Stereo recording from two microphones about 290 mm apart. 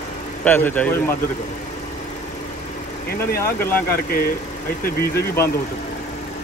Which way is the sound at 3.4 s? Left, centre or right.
Centre.